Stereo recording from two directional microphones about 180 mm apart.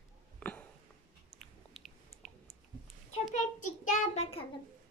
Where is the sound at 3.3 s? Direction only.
45° left (ahead or behind).